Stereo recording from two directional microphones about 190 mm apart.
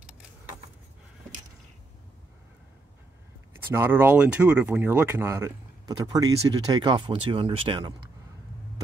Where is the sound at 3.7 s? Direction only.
10° right (ahead or behind).